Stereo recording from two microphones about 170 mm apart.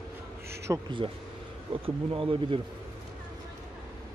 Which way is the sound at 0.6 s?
30° right (ahead or behind).